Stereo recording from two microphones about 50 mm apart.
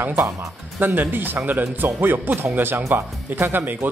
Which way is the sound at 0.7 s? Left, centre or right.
Right.